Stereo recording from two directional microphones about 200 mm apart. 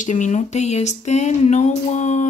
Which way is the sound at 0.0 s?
40° left (ahead or behind).